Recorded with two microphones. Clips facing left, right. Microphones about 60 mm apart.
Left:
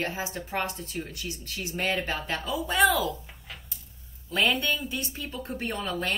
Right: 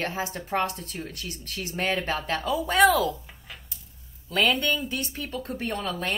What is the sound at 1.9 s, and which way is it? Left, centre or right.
A woman's voice, right.